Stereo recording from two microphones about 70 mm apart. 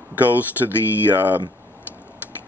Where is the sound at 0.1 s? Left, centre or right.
Right.